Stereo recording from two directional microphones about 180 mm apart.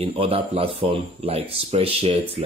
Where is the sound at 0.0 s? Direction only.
30° right (ahead or behind).